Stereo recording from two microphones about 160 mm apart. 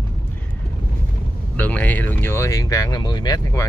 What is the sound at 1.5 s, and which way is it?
Speech, 10° left (ahead or behind).